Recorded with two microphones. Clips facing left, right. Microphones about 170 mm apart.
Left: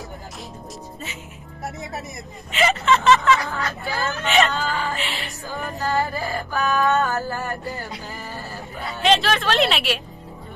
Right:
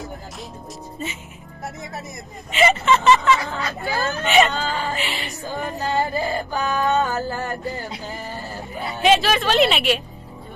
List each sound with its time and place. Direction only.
2.5 s speech: centre (ahead or behind)
3.3 s music: 20° right (ahead or behind)
4.2 s speech: centre (ahead or behind)
5.4 s music: 20° right (ahead or behind)
8.4 s a sound: 20° right (ahead or behind)
9.0 s speech: 5° right (ahead or behind)